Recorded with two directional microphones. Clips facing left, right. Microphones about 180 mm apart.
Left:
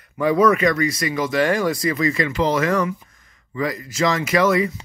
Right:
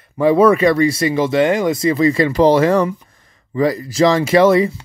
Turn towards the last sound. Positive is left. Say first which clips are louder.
# right 6 dB
turn(degrees=-30)  # may be behind; listen again after turning